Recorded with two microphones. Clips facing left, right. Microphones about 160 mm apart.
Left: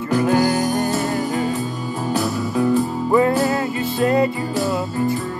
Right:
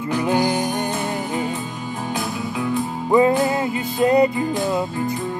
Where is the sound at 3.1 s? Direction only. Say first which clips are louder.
Right 1 dB; 20° right (ahead or behind).